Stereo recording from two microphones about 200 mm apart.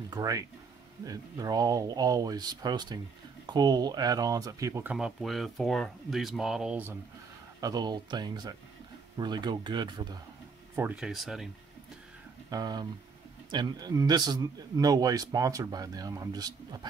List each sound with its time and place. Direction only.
0.1 s a man's voice: 15° right (ahead or behind)
4.9 s speech: centre (ahead or behind)
7.6 s a man's voice: 20° right (ahead or behind)
10.8 s speech: 5° right (ahead or behind)
12.4 s a man's voice: 20° right (ahead or behind)